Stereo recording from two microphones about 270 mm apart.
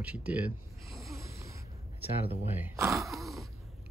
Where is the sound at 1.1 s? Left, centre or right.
Centre.